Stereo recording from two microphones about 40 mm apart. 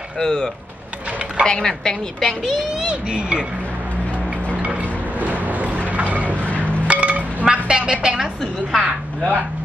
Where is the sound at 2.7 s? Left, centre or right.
Right.